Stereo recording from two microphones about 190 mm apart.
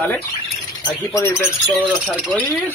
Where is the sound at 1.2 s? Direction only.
15° left (ahead or behind).